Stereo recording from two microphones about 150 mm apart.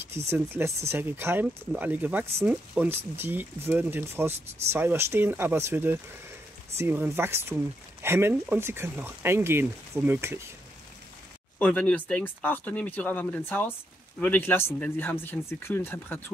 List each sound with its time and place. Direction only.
0.3 s speech: 15° right (ahead or behind)
11.5 s speech: 10° left (ahead or behind)